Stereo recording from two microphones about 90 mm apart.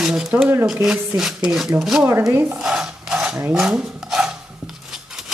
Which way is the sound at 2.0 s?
25° right (ahead or behind).